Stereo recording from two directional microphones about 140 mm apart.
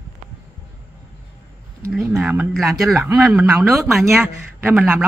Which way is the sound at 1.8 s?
15° right (ahead or behind).